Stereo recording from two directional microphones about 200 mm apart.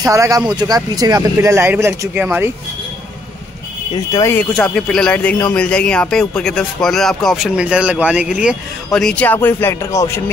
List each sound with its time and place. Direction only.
0.0 s speech: 15° right (ahead or behind)
3.9 s speech: 15° left (ahead or behind)